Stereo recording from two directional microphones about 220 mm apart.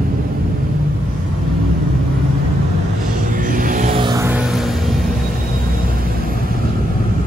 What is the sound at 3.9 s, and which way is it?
Music, 20° right (ahead or behind).